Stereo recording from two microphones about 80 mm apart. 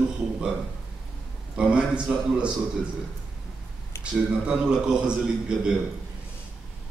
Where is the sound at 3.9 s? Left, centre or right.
Left.